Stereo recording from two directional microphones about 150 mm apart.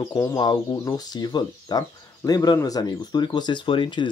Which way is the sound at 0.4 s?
30° left (ahead or behind).